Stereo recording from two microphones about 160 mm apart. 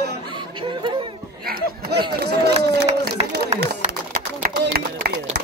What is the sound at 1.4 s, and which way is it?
Speech, 70° right (ahead or behind).